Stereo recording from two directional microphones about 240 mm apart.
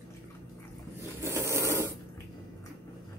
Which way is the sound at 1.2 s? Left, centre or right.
Centre.